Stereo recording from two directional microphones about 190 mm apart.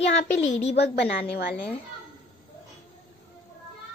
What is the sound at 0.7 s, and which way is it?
Speech, 60° left (ahead or behind).